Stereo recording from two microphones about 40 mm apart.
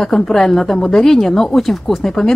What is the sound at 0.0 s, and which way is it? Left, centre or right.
A woman's voice, centre.